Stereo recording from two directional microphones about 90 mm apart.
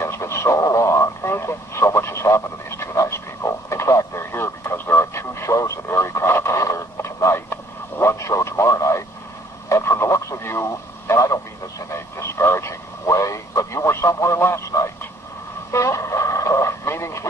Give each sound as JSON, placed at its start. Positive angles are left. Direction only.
{"t": 0.0, "sound": "radio", "side_deg": 30}
{"t": 11.9, "sound": "vehicle", "side_deg": 30}
{"t": 15.7, "sound": "radio", "side_deg": 35}